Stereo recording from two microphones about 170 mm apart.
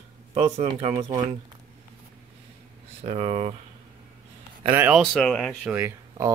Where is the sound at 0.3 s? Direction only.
40° right (ahead or behind).